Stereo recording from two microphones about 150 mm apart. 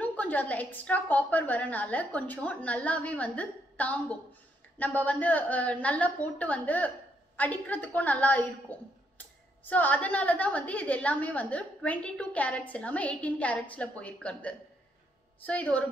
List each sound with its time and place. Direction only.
0.0 s a woman's voice: 10° left (ahead or behind)